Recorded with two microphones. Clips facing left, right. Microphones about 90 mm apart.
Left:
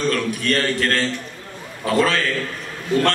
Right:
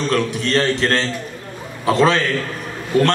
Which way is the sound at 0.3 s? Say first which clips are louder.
Right 3 dB; 20° right (ahead or behind).